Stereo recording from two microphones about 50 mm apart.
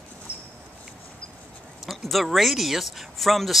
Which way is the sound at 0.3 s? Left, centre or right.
Right.